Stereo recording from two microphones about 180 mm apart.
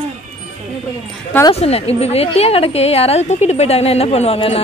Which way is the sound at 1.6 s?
35° left (ahead or behind).